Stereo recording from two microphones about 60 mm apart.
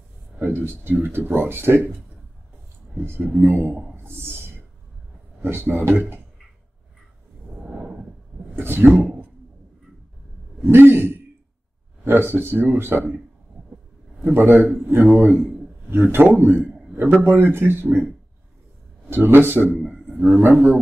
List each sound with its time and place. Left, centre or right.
0.4 s speech: right
3.3 s speech: right
7.6 s a sound: centre
8.5 s a sound: right
10.6 s a man's voice: right
14.3 s speech: right
19.0 s a man's voice: right